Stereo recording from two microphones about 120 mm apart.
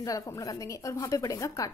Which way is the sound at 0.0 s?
30° left (ahead or behind).